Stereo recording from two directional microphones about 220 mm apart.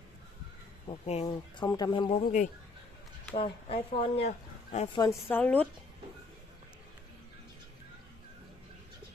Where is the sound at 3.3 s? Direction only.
25° left (ahead or behind).